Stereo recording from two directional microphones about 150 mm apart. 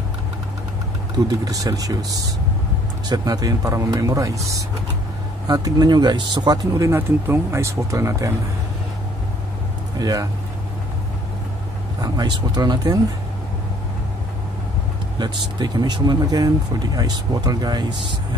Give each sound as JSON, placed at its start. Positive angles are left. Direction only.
{"t": 1.1, "sound": "speech", "side_deg": -25}
{"t": 9.9, "sound": "speech", "side_deg": -25}
{"t": 12.0, "sound": "speech", "side_deg": -30}
{"t": 15.1, "sound": "speech", "side_deg": -30}